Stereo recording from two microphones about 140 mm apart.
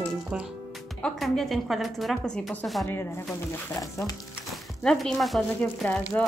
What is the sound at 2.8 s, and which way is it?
Speech, 15° left (ahead or behind).